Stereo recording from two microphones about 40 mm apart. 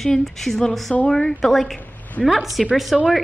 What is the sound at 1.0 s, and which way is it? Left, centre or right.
Speech, left.